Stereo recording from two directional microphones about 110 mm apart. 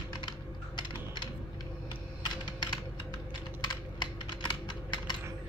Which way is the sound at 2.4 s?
40° left (ahead or behind).